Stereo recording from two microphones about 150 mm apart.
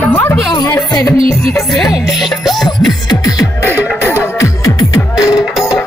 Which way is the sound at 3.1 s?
25° left (ahead or behind).